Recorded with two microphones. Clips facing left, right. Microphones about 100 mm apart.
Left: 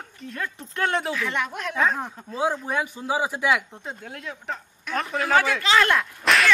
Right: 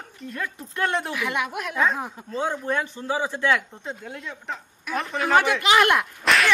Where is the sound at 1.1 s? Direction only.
10° right (ahead or behind).